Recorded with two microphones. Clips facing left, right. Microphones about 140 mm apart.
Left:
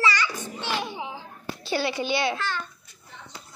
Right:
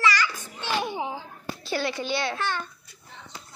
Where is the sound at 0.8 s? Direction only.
50° right (ahead or behind).